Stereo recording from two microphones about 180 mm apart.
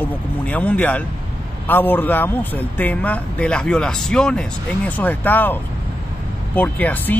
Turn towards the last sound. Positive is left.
turn(degrees=10)  # may be behind; listen again after turning